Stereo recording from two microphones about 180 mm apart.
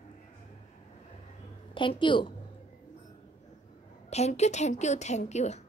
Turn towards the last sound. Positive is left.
turn(degrees=40)  # may be behind; listen again after turning